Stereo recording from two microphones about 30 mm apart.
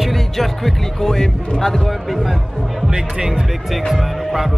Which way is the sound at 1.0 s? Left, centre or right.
Centre.